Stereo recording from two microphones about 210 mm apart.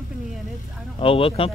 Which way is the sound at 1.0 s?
25° left (ahead or behind).